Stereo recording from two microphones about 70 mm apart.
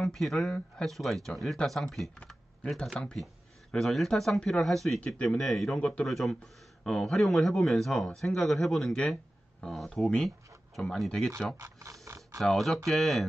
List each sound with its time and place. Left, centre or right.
0.0 s speech: centre
5.0 s speech: centre
5.4 s speech: centre
5.8 s speech: centre
6.0 s speech: centre
11.6 s a sound: right
12.4 s speech: centre